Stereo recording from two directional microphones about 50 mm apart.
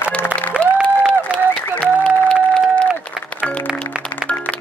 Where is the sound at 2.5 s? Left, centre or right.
Left.